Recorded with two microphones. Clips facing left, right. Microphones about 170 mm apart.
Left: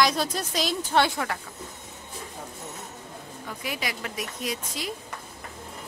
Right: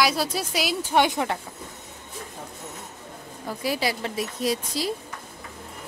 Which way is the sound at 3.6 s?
35° right (ahead or behind).